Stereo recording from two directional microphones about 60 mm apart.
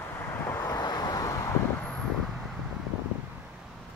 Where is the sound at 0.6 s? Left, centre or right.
Left.